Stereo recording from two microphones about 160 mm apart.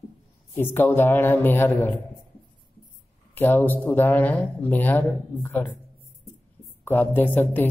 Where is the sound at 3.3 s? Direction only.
10° left (ahead or behind).